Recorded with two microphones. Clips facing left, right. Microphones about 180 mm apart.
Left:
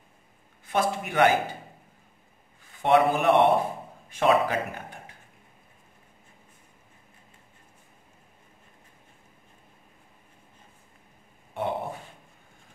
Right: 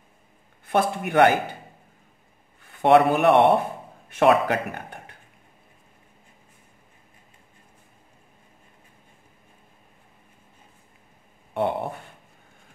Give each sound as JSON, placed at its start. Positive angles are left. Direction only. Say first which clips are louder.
{"t": 0.7, "sound": "a man's voice", "louder": "right 3 dB", "side_deg": -60}
{"t": 2.6, "sound": "a man's voice", "louder": "right 4 dB", "side_deg": -65}
{"t": 11.5, "sound": "a sound", "louder": "right 5 dB", "side_deg": -60}